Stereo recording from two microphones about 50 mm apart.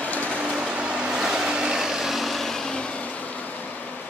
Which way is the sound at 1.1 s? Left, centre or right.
Centre.